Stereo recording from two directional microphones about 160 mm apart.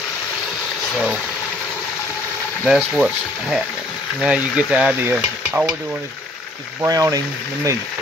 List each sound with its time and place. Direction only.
2.6 s speech: 5° right (ahead or behind)
6.8 s speech: 20° right (ahead or behind)